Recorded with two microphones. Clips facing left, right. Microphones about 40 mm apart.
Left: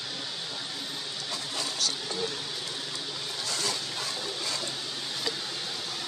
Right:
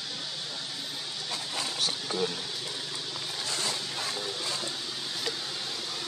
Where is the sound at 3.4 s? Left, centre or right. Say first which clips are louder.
Left 1 dB; right.